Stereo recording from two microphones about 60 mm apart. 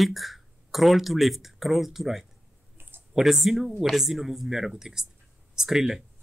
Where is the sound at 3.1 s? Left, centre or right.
Centre.